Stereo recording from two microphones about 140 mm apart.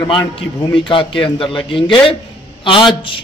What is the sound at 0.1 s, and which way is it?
A man's voice, 35° left (ahead or behind).